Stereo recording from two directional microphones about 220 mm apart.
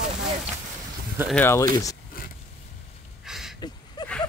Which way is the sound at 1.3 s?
10° left (ahead or behind).